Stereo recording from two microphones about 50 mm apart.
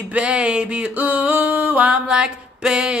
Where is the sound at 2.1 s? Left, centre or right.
Centre.